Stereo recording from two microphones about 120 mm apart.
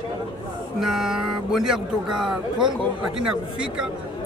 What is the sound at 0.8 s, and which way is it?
Speech, 5° right (ahead or behind).